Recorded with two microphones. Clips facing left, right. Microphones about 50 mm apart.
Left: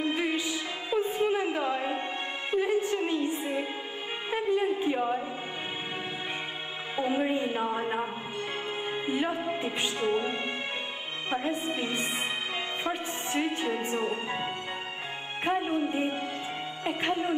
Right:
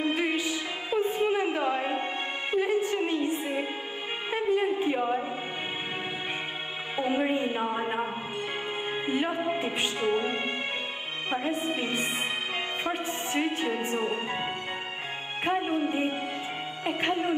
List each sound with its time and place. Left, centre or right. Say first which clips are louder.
0.0 s music: right 1 dB; centre
4.8 s chant: right 1 dB; centre
7.0 s a sound: right 1 dB; centre
9.0 s music: right 2 dB; centre